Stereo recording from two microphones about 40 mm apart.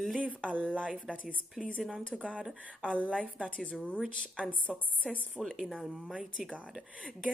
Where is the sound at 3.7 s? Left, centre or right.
Left.